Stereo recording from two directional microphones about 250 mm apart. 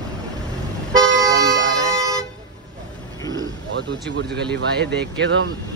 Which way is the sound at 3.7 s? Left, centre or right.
Right.